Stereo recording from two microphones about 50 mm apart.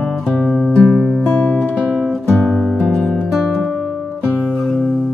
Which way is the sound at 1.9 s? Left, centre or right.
Centre.